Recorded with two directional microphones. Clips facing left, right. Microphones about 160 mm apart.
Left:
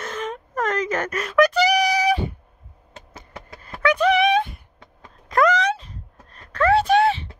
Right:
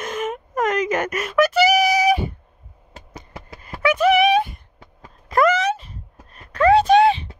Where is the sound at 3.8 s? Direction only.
5° right (ahead or behind).